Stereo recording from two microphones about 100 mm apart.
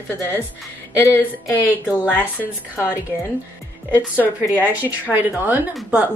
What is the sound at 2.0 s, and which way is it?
Speech, 15° right (ahead or behind).